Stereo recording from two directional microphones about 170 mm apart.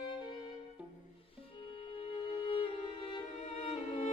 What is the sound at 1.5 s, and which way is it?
Music, 30° left (ahead or behind).